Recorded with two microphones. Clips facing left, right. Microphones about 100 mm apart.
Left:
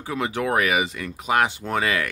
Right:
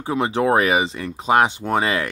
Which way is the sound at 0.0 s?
25° right (ahead or behind).